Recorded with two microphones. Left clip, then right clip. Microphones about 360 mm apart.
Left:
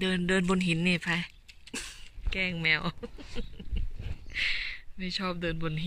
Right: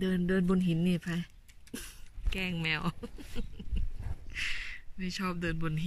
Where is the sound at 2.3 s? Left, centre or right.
Centre.